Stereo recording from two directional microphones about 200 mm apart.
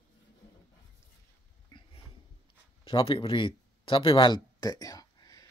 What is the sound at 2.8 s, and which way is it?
Speech, 25° left (ahead or behind).